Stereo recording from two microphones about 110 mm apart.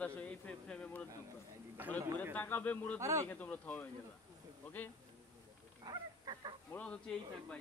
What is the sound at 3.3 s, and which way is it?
Speech, 15° left (ahead or behind).